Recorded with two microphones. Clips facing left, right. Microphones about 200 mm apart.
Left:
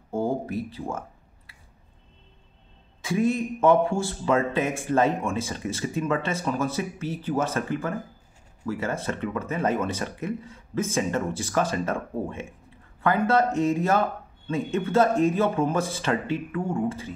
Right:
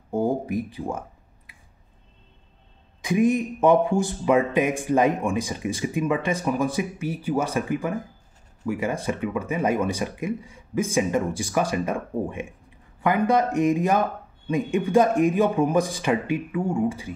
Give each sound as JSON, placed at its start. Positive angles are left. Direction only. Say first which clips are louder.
{"t": 0.1, "sound": "speech", "louder": "right 3 dB", "side_deg": -15}
{"t": 3.0, "sound": "speech", "louder": "right 3 dB", "side_deg": -15}